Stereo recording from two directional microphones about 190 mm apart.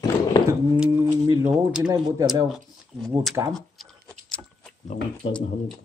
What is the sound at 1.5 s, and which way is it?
Speech, 5° right (ahead or behind).